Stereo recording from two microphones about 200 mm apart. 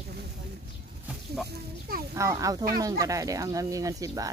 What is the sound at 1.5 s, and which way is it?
Speech, 45° right (ahead or behind).